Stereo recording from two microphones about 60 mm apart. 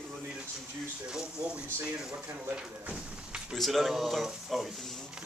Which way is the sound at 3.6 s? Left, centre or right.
Centre.